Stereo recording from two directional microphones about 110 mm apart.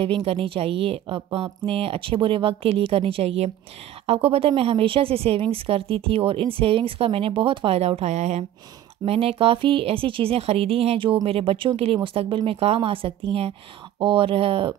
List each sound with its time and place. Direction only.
0.0 s a woman's voice: 55° right (ahead or behind); by 8.5 s 90° right
9.0 s a woman's voice: 60° right (ahead or behind)